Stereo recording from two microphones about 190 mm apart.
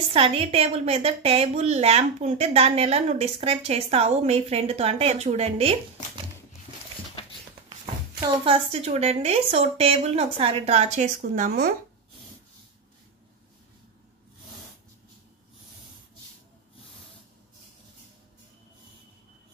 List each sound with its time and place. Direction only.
0.1 s a woman's voice: 30° right (ahead or behind)
8.3 s a woman's voice: 30° right (ahead or behind); by 11.7 s 45° right (ahead or behind)